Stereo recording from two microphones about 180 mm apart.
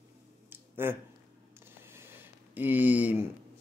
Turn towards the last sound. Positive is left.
turn(degrees=-10)  # may be behind; listen again after turning